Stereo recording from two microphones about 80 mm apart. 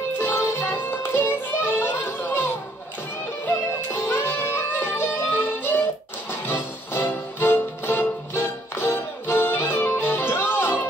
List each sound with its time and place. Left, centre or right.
0.2 s music: left
1.8 s a sound: left
3.4 s music: left